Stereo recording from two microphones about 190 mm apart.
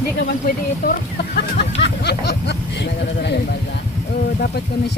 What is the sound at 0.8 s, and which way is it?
Speech, 60° left (ahead or behind).